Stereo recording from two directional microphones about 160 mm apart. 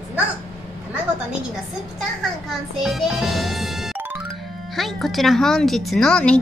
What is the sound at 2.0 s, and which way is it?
A child's voice, centre (ahead or behind).